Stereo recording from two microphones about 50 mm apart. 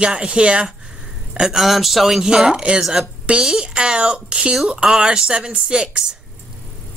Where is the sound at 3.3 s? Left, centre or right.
Right.